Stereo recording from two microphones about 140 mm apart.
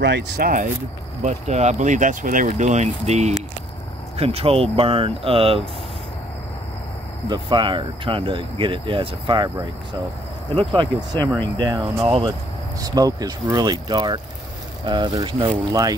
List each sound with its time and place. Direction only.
0.4 s speech: 85° right
1.2 s speech: 55° right (ahead or behind); by 2.5 s 75° right (ahead or behind)
2.5 s speech: 55° right (ahead or behind)
7.2 s speech: 30° right (ahead or behind)
10.6 s speech: 35° right (ahead or behind)
12.8 s speech: 25° right (ahead or behind)